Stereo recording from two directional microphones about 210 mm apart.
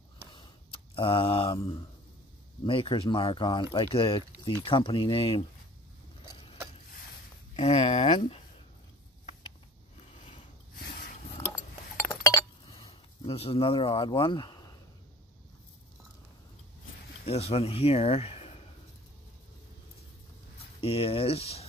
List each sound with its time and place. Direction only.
0.9 s speech: 25° left (ahead or behind)
7.5 s speech: 30° left (ahead or behind)
12.0 s chink: 15° left (ahead or behind)
17.2 s speech: 30° left (ahead or behind)
20.8 s speech: 25° left (ahead or behind)